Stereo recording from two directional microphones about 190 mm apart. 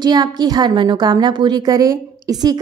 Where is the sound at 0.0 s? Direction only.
20° right (ahead or behind).